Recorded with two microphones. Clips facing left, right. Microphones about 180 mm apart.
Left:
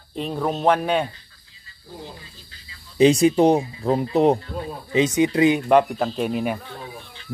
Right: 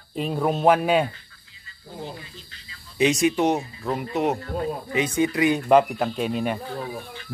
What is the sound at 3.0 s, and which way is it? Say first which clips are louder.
Speech: left 5 dB; 30° left (ahead or behind).